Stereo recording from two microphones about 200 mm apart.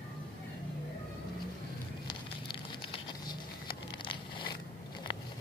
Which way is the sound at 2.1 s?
25° left (ahead or behind).